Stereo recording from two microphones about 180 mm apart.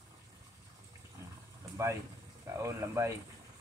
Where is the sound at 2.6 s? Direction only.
15° right (ahead or behind).